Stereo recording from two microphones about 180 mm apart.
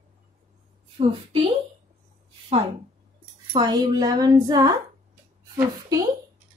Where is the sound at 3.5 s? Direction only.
20° right (ahead or behind).